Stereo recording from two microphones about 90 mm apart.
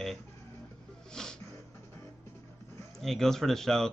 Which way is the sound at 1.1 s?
5° left (ahead or behind).